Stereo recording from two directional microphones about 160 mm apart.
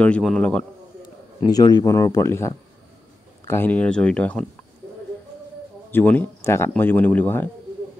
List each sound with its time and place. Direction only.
0.0 s speech: 5° left (ahead or behind)
1.4 s speech: 25° left (ahead or behind); by 4.5 s 10° left (ahead or behind)
5.9 s speech: 10° left (ahead or behind)